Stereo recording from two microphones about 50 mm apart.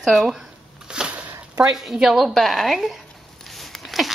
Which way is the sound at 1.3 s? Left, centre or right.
Right.